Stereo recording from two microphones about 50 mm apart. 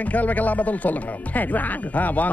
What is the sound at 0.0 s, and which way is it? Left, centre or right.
Music, left.